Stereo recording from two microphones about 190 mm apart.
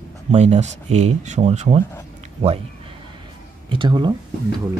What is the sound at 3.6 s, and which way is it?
Speech, 25° right (ahead or behind).